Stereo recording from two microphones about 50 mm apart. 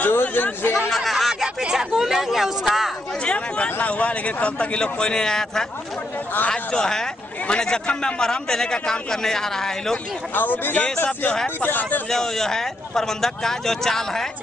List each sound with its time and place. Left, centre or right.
0.0 s speech: left
0.8 s speech: centre
1.4 s a sound: centre
3.3 s a sound: left
3.8 s a man's voice: left; by 9.9 s centre
10.3 s speech: left
12.1 s a man's voice: centre